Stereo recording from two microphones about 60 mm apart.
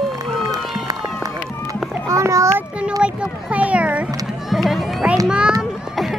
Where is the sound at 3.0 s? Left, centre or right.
Centre.